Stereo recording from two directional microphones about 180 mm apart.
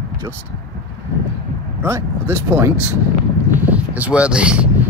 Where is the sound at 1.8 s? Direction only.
15° right (ahead or behind).